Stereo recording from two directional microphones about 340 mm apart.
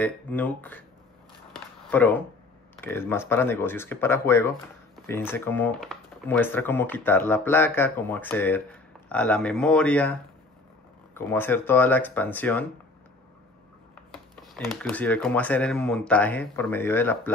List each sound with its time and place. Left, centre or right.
0.0 s speech: centre
1.9 s speech: centre
11.1 s speech: centre
14.8 s speech: centre